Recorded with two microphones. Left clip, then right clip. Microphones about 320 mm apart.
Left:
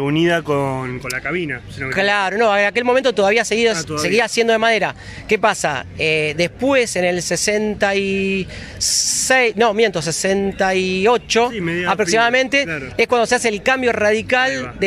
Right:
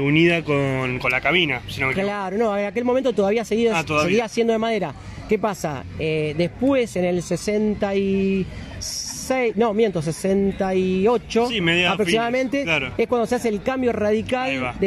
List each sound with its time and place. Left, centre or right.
0.0 s speech: left
1.5 s speech: right
2.0 s speech: left
11.5 s speech: centre
11.9 s speech: left